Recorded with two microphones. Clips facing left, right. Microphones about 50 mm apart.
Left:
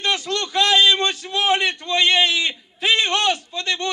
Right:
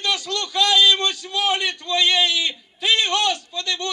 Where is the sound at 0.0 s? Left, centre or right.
Left.